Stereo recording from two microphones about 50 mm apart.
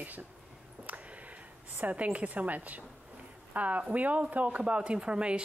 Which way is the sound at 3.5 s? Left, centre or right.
Right.